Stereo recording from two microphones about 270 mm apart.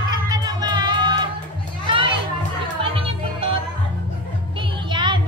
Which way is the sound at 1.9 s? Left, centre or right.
Centre.